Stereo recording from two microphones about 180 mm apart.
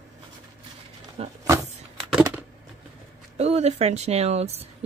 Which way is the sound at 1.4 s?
20° right (ahead or behind).